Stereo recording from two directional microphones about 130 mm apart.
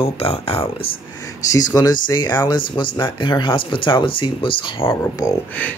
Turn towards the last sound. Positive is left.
turn(degrees=25)  # may be behind; listen again after turning